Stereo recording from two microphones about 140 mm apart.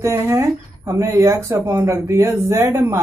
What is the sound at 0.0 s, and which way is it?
Speech, 20° right (ahead or behind).